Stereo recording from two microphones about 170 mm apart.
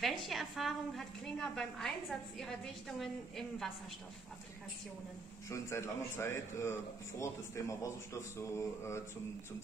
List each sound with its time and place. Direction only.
0.0 s a woman's voice: centre (ahead or behind)
5.5 s a man's voice: 15° left (ahead or behind)